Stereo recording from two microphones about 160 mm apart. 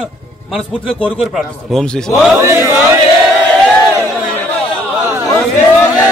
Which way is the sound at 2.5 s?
15° right (ahead or behind).